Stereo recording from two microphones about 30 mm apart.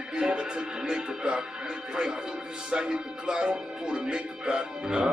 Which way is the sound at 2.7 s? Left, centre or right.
Right.